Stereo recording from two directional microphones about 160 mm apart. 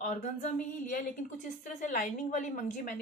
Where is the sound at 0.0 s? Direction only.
50° left (ahead or behind).